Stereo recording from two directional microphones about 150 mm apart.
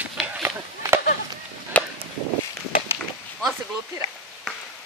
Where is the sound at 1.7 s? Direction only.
10° left (ahead or behind).